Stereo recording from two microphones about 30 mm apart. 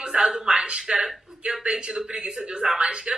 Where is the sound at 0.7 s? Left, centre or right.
Right.